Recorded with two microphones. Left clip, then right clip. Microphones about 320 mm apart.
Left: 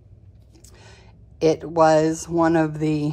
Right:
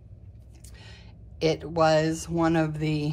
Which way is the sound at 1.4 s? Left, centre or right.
Centre.